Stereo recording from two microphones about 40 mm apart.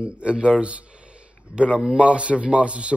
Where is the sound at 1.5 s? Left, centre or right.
Right.